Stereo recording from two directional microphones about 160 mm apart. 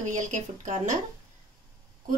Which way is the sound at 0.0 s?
50° right (ahead or behind).